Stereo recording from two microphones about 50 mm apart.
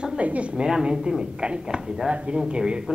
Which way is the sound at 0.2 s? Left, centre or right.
Right.